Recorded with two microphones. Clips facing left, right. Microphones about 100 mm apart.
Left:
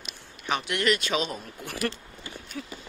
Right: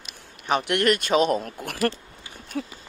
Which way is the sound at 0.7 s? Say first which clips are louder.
Right 4 dB; 55° right (ahead or behind).